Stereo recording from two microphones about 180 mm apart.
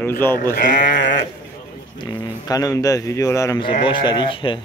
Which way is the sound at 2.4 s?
20° left (ahead or behind).